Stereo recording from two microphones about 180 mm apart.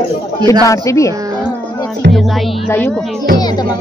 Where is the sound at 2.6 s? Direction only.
10° left (ahead or behind).